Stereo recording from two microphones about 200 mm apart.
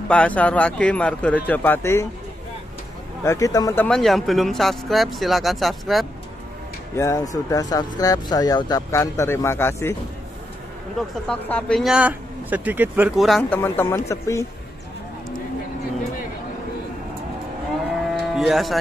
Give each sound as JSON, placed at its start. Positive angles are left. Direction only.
{"t": 0.1, "sound": "speech", "side_deg": 5}
{"t": 3.3, "sound": "speech", "side_deg": 15}
{"t": 7.0, "sound": "speech", "side_deg": 15}
{"t": 11.0, "sound": "speech", "side_deg": 5}
{"t": 13.4, "sound": "speech", "side_deg": 10}
{"t": 18.3, "sound": "speech", "side_deg": 0}